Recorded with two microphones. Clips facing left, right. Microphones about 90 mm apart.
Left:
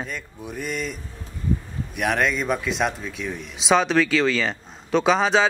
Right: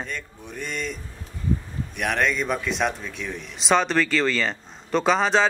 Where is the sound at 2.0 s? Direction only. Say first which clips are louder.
Left 1 dB; 5° left (ahead or behind).